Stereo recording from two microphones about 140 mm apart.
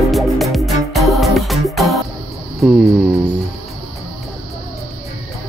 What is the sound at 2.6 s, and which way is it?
Insect, centre (ahead or behind).